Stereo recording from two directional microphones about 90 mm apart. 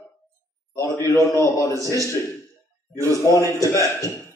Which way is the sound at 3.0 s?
35° left (ahead or behind).